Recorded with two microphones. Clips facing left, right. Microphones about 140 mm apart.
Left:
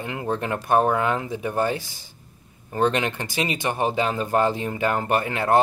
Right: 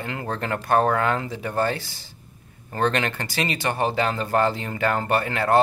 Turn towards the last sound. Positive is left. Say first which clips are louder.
# even
turn(degrees=20)  # may be behind; listen again after turning